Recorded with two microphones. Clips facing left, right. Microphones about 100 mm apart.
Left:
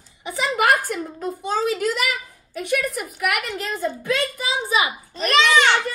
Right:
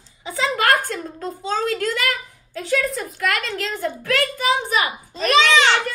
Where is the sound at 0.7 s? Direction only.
75° right (ahead or behind).